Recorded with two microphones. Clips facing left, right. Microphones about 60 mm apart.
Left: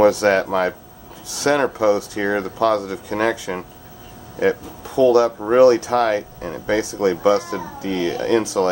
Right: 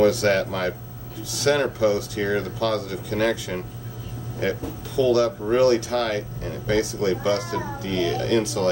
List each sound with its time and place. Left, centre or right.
0.0 s speech: left